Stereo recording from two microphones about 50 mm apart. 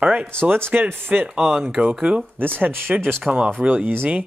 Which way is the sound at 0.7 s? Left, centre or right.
Right.